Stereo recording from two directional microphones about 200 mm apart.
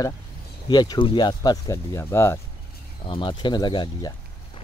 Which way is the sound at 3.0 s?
25° left (ahead or behind).